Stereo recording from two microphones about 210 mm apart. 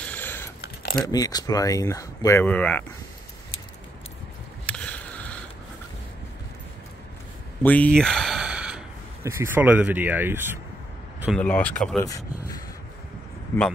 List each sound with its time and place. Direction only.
0.0 s a sound: 10° left (ahead or behind)
1.0 s speech: 20° left (ahead or behind)
4.6 s a sound: 5° left (ahead or behind)
7.6 s speech: 5° left (ahead or behind); by 10.6 s 10° right (ahead or behind)
11.3 s speech: 5° left (ahead or behind)
12.0 s speech: 15° left (ahead or behind)